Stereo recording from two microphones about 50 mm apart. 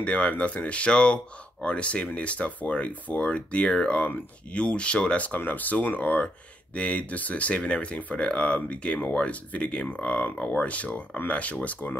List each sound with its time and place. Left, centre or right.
0.0 s speech: left